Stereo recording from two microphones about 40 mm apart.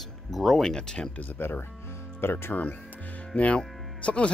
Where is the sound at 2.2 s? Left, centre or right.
Left.